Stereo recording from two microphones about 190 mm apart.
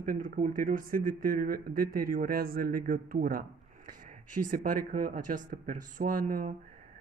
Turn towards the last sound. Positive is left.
turn(degrees=-45)  # may be behind; listen again after turning